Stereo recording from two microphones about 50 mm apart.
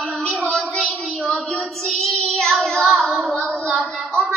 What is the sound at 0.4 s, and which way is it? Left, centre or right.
Child singing, centre.